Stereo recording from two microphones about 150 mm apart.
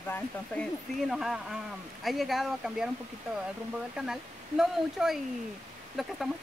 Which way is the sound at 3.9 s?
5° right (ahead or behind).